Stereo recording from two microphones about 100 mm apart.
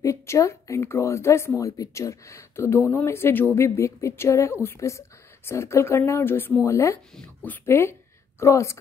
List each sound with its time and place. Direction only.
0.0 s speech: 30° left (ahead or behind)